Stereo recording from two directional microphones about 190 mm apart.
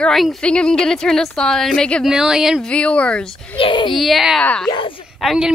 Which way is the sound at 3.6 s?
25° left (ahead or behind).